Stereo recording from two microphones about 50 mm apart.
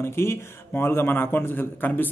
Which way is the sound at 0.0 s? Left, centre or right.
Left.